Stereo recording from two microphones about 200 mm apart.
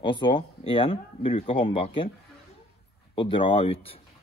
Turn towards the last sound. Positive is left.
turn(degrees=30)  # may be behind; listen again after turning